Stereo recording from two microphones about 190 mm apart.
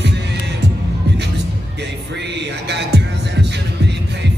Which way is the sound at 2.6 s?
65° right (ahead or behind).